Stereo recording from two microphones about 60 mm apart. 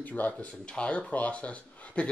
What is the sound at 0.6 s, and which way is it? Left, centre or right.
Speech, centre.